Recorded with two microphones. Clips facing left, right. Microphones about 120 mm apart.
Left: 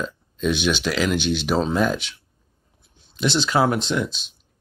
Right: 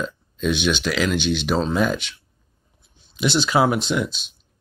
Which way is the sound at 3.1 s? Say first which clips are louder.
Right 1 dB; 5° right (ahead or behind).